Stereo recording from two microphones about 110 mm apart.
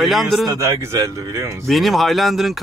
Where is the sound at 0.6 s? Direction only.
25° right (ahead or behind).